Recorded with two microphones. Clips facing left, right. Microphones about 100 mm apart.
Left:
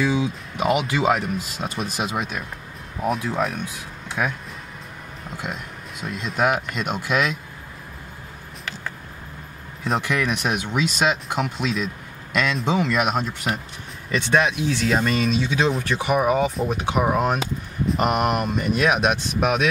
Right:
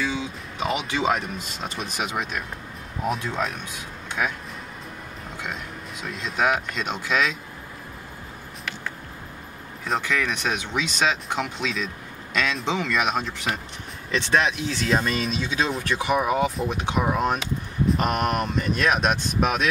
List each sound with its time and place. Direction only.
0.1 s speech: 10° left (ahead or behind)
5.4 s speech: 5° left (ahead or behind)
9.9 s speech: 15° left (ahead or behind)